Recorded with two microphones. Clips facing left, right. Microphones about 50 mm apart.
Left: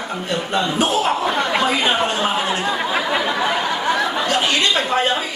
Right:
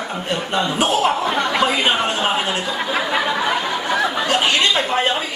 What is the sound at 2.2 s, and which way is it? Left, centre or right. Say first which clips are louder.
Speech: even; right.